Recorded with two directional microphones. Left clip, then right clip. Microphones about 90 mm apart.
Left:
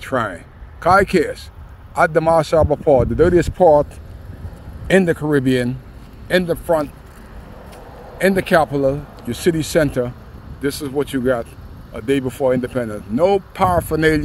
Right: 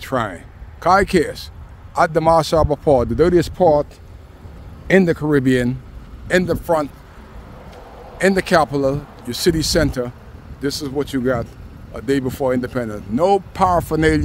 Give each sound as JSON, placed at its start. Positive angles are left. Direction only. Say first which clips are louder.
{"t": 0.0, "sound": "speech", "louder": "left 1 dB", "side_deg": -30}
{"t": 5.3, "sound": "speech", "louder": "right 1 dB", "side_deg": -50}
{"t": 6.2, "sound": "a man's voice", "louder": "even", "side_deg": -60}
{"t": 8.2, "sound": "speech", "louder": "even", "side_deg": -65}